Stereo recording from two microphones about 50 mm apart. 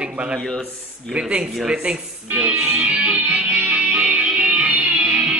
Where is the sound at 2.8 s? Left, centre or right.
Right.